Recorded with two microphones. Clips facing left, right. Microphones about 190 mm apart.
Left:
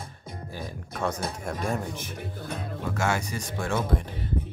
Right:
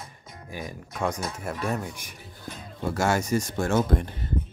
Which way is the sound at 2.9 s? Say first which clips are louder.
Right 5 dB; 40° right (ahead or behind).